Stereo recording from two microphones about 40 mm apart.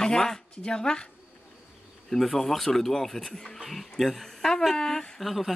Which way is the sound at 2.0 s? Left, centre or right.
Centre.